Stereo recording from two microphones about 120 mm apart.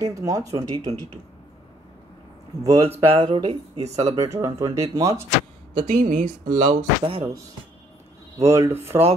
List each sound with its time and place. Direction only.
0.0 s speech: 25° right (ahead or behind)
0.6 s speech: 50° right (ahead or behind)
2.6 s speech: 30° right (ahead or behind)
3.2 s speech: 40° right (ahead or behind)
4.0 s speech: 30° right (ahead or behind)
5.8 s speech: 90° right
7.0 s speech: 50° right (ahead or behind)
8.5 s speech: 25° right (ahead or behind)